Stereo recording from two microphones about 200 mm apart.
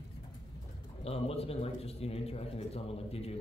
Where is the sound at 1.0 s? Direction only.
30° left (ahead or behind).